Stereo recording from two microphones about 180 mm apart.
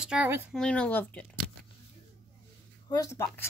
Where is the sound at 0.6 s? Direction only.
5° left (ahead or behind).